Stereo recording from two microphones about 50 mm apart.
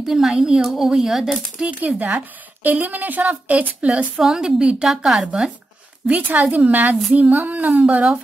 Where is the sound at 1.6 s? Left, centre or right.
Centre.